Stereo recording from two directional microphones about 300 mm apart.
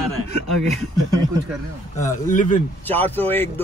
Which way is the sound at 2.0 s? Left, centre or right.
Left.